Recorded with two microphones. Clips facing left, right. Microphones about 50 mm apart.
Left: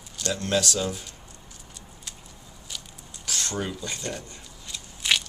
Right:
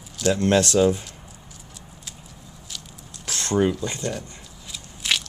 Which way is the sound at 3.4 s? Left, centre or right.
Right.